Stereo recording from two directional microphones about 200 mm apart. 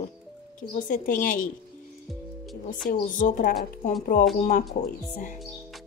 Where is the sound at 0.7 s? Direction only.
40° left (ahead or behind).